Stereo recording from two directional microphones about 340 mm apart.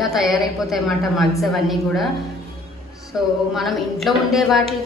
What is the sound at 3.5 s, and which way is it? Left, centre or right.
A woman's voice, centre.